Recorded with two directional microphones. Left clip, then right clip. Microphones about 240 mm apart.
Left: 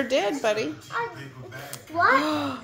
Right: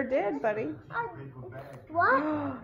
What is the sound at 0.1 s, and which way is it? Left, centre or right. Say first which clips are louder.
Speech: left 5 dB; centre.